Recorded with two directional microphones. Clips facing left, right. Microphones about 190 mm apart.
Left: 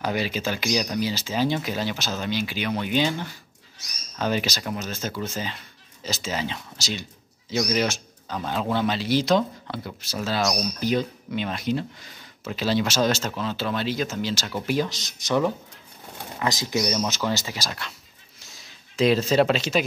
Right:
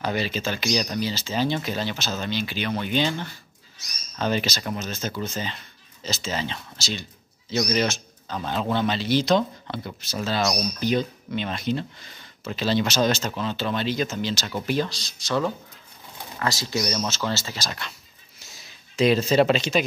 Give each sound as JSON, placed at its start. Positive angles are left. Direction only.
{"t": 0.0, "sound": "speech", "side_deg": 10}
{"t": 14.9, "sound": "speech", "side_deg": 20}
{"t": 17.6, "sound": "speech", "side_deg": 0}
{"t": 18.9, "sound": "speech", "side_deg": 0}